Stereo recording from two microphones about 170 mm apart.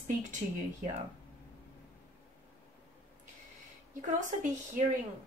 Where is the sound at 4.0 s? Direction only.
45° right (ahead or behind).